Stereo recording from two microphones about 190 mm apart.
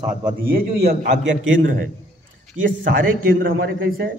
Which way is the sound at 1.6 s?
45° right (ahead or behind).